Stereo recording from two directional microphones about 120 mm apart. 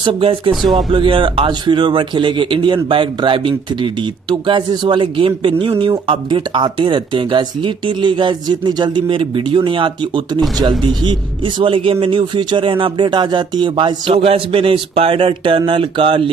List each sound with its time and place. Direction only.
0.0 s a man's voice: 45° right (ahead or behind)